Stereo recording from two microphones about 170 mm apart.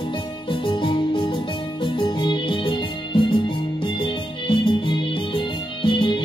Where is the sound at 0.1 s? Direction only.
30° left (ahead or behind).